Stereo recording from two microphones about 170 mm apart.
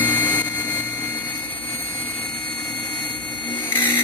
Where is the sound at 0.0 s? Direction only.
10° left (ahead or behind).